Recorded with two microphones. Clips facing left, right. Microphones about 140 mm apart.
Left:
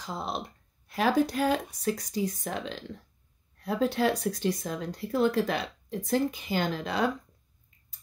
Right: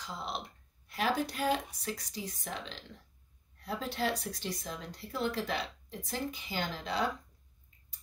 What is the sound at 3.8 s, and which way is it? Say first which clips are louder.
Speech: left 9 dB; 50° left (ahead or behind).